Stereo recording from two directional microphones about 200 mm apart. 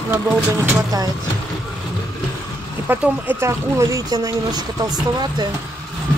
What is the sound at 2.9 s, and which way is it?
Speech, 10° right (ahead or behind).